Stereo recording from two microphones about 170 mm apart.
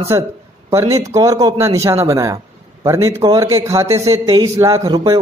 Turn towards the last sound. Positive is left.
turn(degrees=-20)  # may be behind; listen again after turning